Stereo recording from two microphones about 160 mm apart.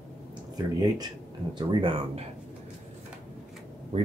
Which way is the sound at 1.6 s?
30° right (ahead or behind).